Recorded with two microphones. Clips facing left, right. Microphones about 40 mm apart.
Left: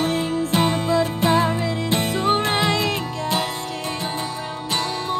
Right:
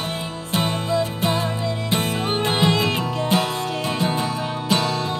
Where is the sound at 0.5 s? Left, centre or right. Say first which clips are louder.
Left 1 dB; centre.